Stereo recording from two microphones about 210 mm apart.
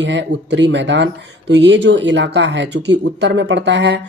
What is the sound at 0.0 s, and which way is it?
Speech, 55° right (ahead or behind).